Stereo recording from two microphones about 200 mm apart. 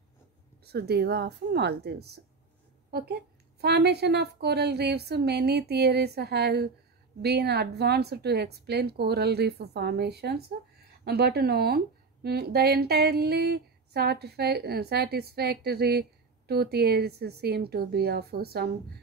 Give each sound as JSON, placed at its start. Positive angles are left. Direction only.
{"t": 0.7, "sound": "a woman's voice", "side_deg": -50}